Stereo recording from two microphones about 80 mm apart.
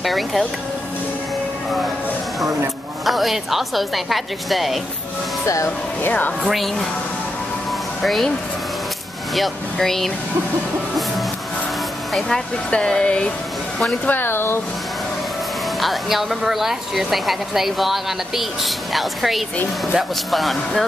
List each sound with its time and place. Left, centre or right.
0.0 s a woman's voice: centre
3.1 s a woman's voice: centre
5.4 s speech: left
6.0 s speech: left
6.4 s a woman's voice: centre
8.0 s speech: centre
9.3 s a woman's voice: centre
12.1 s speech: centre
14.0 s speech: left
15.8 s a woman's voice: centre